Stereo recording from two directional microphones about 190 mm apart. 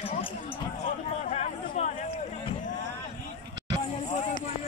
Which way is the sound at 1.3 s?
35° left (ahead or behind).